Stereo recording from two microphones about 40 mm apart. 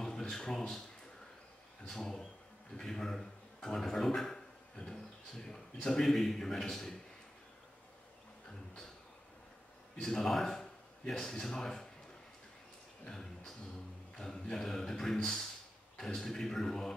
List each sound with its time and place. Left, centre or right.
0.0 s speech: centre
1.9 s a man's voice: centre
9.9 s a man's voice: centre
13.0 s a sound: centre
14.1 s a man's voice: centre